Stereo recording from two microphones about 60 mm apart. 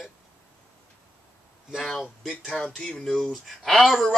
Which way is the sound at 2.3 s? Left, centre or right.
Centre.